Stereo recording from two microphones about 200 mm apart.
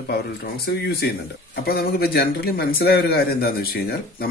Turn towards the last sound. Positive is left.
turn(degrees=50)  # may be behind; listen again after turning